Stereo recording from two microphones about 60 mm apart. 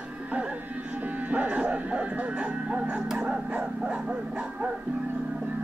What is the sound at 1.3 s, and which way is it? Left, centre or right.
Music, right.